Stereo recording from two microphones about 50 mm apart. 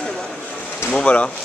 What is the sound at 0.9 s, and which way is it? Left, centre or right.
Speech, left.